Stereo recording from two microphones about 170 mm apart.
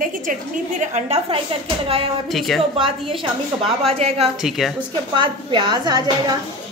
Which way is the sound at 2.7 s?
30° right (ahead or behind).